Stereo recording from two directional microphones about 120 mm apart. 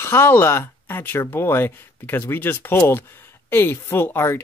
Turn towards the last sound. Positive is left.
turn(degrees=20)  # may be behind; listen again after turning